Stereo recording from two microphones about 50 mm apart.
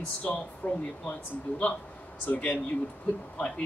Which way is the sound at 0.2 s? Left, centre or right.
Left.